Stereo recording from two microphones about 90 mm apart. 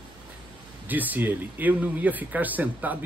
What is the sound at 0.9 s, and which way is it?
Speech, 20° right (ahead or behind).